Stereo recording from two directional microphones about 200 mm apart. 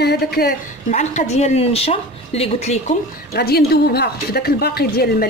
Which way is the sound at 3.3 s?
50° left (ahead or behind).